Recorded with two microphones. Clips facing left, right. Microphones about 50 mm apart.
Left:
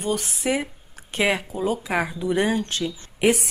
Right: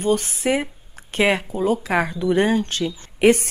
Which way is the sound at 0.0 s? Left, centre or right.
Right.